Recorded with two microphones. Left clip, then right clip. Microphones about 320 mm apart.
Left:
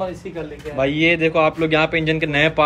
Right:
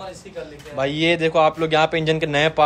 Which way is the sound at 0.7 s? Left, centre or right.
Centre.